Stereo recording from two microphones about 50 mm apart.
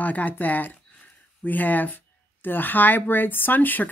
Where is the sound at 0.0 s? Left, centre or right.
Left.